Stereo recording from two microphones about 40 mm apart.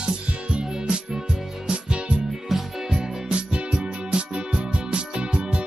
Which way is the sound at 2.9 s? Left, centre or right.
Right.